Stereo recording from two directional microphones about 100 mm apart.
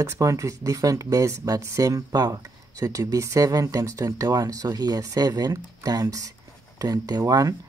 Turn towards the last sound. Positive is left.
turn(degrees=-35)  # may be behind; listen again after turning